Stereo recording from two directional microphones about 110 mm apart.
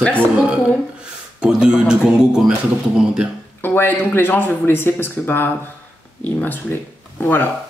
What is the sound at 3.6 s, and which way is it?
A woman's voice, 20° left (ahead or behind).